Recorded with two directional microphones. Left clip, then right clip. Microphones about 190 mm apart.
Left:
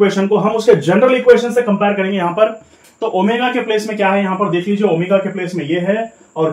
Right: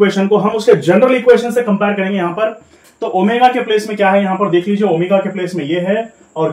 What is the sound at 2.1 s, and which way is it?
A man's voice, 20° left (ahead or behind).